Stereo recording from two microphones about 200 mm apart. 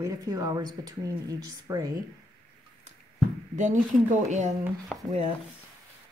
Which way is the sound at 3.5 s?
40° right (ahead or behind).